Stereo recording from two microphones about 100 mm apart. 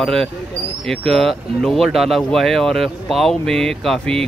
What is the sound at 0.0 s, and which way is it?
Speech, 5° left (ahead or behind).